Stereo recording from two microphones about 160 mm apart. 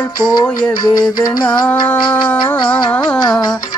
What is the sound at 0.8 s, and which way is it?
Music, 25° left (ahead or behind).